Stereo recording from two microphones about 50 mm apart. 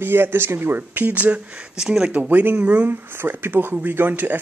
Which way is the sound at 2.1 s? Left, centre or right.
Right.